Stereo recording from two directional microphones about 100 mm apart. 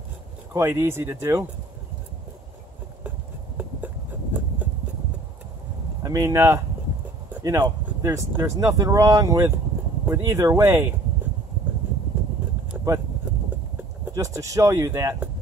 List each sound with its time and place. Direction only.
0.5 s speech: 25° right (ahead or behind)
3.5 s a sound: 20° right (ahead or behind)
6.0 s speech: 30° right (ahead or behind)
12.7 s vehicle: 20° right (ahead or behind)
14.1 s speech: 30° right (ahead or behind)